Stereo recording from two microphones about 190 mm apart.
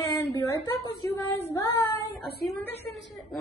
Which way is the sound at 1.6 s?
15° left (ahead or behind).